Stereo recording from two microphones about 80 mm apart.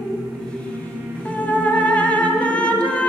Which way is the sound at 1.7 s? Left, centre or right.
Centre.